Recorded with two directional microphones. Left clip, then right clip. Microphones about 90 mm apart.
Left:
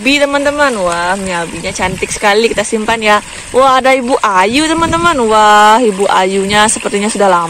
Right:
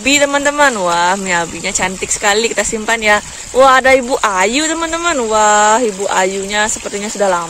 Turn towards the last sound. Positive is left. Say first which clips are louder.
# left 5 dB
turn(degrees=15)  # may be behind; listen again after turning